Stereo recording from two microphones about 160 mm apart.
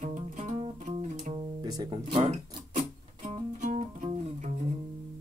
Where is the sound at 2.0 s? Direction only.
45° right (ahead or behind).